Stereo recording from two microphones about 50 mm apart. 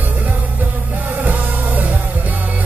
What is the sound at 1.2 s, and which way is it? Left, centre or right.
Music, right.